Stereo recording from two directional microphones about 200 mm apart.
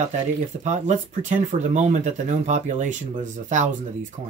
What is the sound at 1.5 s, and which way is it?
Speech, 35° right (ahead or behind).